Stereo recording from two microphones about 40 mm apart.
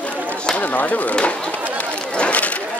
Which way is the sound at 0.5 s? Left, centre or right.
Left.